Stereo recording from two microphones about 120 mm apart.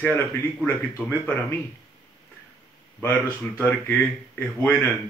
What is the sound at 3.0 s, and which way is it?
Speech, 15° left (ahead or behind).